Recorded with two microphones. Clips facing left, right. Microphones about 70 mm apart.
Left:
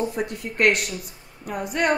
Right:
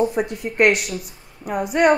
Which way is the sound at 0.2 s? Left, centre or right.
Centre.